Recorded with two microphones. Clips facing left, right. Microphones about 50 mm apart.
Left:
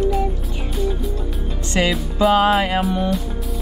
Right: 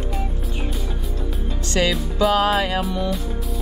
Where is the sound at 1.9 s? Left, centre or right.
Centre.